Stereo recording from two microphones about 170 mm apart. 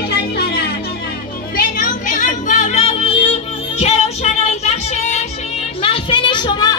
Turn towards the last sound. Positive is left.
turn(degrees=25)  # may be behind; listen again after turning